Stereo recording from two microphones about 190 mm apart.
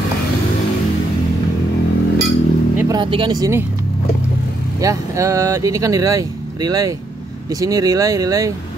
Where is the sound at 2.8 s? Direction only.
20° right (ahead or behind).